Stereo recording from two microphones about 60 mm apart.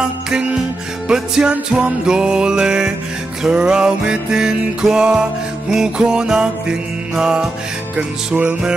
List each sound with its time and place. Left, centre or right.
0.0 s music: centre